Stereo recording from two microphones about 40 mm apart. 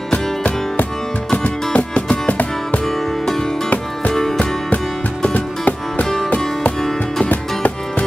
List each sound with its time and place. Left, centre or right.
1.3 s music: left
4.1 s music: centre
5.3 s music: left
6.8 s music: centre
7.2 s music: left